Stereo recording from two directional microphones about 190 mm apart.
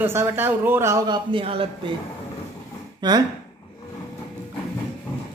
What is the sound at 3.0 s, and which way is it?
Speech, 20° right (ahead or behind).